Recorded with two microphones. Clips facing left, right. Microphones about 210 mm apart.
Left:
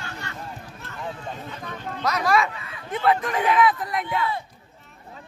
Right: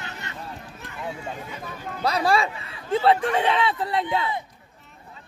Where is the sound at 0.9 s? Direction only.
10° right (ahead or behind).